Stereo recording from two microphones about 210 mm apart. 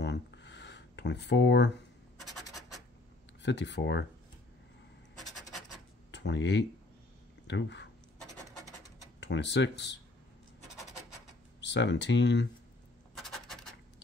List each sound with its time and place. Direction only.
0.0 s a sound: 55° left (ahead or behind)
3.4 s speech: 55° left (ahead or behind)
6.1 s speech: 55° left (ahead or behind)
7.4 s a sound: 55° left (ahead or behind)
9.2 s speech: 55° left (ahead or behind)
11.6 s speech: 55° left (ahead or behind)
13.2 s scratch: centre (ahead or behind)